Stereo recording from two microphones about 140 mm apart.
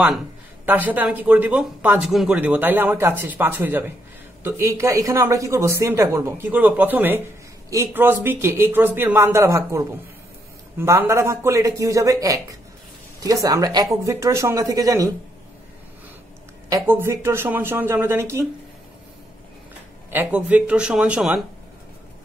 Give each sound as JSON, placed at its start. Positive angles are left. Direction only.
{"t": 0.7, "sound": "speech", "side_deg": -10}
{"t": 16.6, "sound": "speech", "side_deg": -20}
{"t": 20.1, "sound": "speech", "side_deg": -10}